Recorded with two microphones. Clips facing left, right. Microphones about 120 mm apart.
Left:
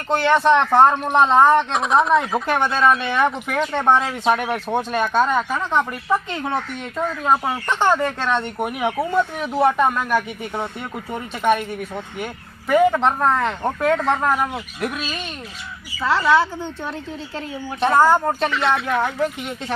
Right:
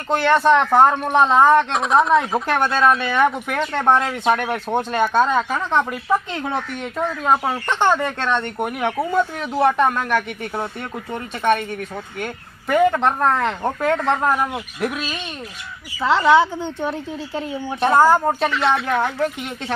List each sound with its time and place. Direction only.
0.1 s speech: centre (ahead or behind)
6.3 s speech: centre (ahead or behind)
16.0 s a woman's voice: 20° right (ahead or behind)
17.7 s speech: 5° right (ahead or behind)